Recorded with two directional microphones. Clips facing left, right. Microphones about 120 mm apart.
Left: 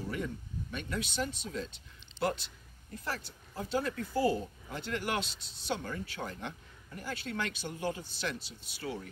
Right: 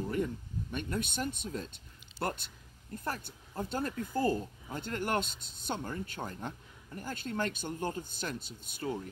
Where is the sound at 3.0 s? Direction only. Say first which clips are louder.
Right 1 dB; 50° right (ahead or behind).